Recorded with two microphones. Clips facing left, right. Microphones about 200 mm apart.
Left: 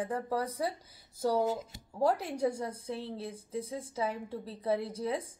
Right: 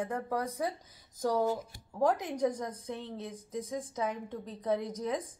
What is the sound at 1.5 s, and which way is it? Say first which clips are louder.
Speech: right 1 dB; 20° left (ahead or behind).